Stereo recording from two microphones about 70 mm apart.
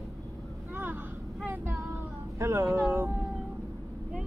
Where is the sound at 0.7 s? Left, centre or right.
Right.